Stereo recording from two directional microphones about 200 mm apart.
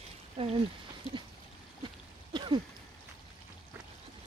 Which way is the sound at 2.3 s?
20° right (ahead or behind).